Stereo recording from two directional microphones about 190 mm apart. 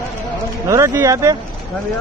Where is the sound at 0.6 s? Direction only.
15° right (ahead or behind).